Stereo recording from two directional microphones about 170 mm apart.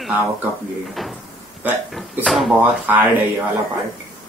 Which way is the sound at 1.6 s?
5° right (ahead or behind).